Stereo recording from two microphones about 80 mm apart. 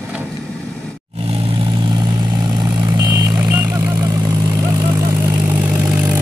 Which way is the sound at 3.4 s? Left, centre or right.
Right.